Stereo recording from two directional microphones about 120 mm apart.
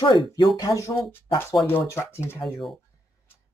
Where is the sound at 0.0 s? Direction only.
45° left (ahead or behind).